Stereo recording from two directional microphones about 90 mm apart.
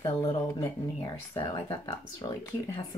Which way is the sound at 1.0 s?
70° left (ahead or behind).